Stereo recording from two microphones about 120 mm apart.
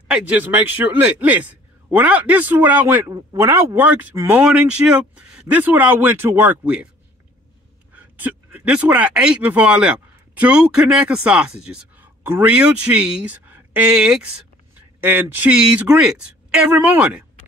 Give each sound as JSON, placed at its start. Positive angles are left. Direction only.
{"t": 0.1, "sound": "a man's voice", "side_deg": -10}
{"t": 7.9, "sound": "a man's voice", "side_deg": -10}
{"t": 15.0, "sound": "a man's voice", "side_deg": -15}